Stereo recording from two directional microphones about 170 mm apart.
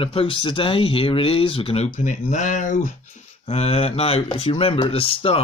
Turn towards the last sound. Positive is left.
turn(degrees=35)  # may be behind; listen again after turning